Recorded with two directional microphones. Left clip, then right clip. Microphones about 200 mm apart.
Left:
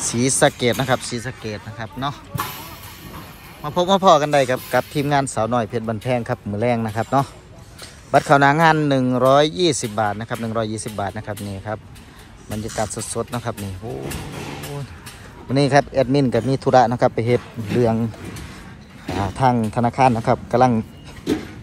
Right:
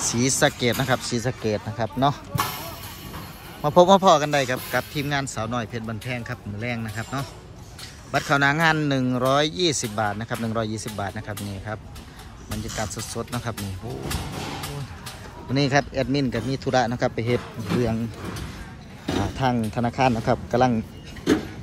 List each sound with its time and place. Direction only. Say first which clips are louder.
0.1 s speech: left 5 dB; 5° right (ahead or behind)
1.1 s speech: right 3 dB; 25° right (ahead or behind)
3.6 s speech: right 3 dB; 20° right (ahead or behind)
4.0 s speech: left 4 dB; 5° right (ahead or behind)
12.8 s speech: left 5 dB; centre (ahead or behind)
15.5 s speech: left 6 dB; 5° right (ahead or behind)
19.0 s speech: left 5 dB; centre (ahead or behind)